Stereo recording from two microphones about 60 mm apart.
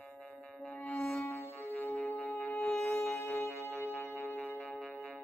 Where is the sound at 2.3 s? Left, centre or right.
Left.